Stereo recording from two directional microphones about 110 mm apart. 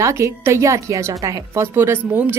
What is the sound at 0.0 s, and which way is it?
A woman's voice, 30° right (ahead or behind).